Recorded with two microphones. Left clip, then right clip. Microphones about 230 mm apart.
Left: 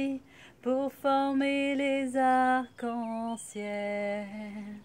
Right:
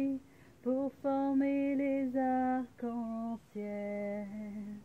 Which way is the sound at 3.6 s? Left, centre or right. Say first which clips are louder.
Left 6 dB; left.